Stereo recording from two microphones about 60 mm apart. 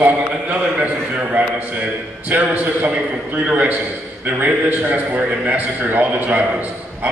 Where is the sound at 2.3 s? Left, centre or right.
Right.